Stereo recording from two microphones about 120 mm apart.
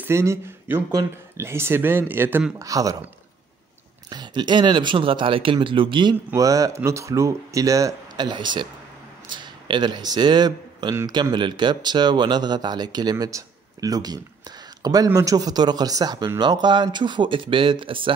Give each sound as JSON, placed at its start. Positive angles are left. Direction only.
{"t": 0.0, "sound": "speech", "side_deg": -20}
{"t": 2.6, "sound": "speech", "side_deg": -30}
{"t": 4.1, "sound": "speech", "side_deg": -35}
{"t": 6.3, "sound": "speech", "side_deg": -30}
{"t": 8.3, "sound": "speech", "side_deg": -40}